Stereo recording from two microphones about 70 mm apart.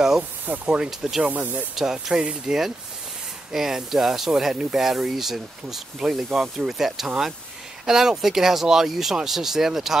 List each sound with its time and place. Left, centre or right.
0.5 s speech: centre
1.3 s speech: right
1.8 s speech: centre